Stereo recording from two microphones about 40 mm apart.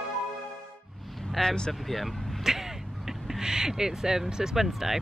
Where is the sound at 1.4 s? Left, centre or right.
Centre.